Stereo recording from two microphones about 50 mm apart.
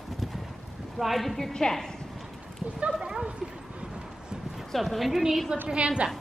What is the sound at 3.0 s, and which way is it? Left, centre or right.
Speech, centre.